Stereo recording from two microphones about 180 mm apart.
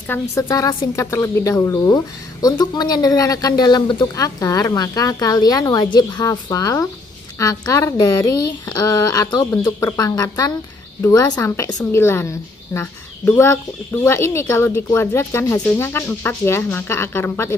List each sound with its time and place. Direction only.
0.1 s a woman's voice: 15° left (ahead or behind)